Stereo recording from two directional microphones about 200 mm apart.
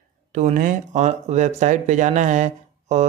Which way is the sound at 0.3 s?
35° right (ahead or behind).